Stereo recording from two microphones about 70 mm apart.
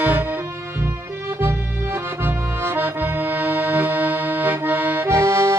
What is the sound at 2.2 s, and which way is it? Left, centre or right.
Accordion, right.